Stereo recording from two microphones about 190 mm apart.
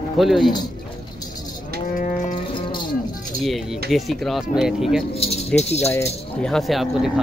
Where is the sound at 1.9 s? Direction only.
40° left (ahead or behind).